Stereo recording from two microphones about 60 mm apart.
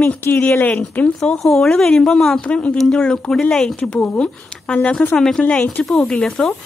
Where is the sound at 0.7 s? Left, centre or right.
Left.